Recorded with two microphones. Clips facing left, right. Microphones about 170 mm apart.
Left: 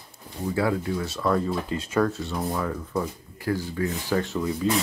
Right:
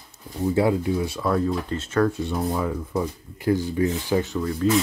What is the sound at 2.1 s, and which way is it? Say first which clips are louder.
Speech: right 3 dB; 15° right (ahead or behind).